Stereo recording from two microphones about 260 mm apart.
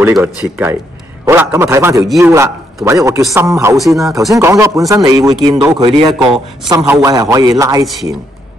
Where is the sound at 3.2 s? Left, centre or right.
Centre.